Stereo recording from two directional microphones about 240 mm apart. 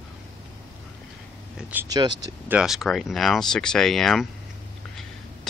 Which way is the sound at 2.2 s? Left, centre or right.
Centre.